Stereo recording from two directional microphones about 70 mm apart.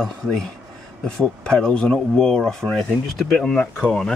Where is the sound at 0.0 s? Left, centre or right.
Centre.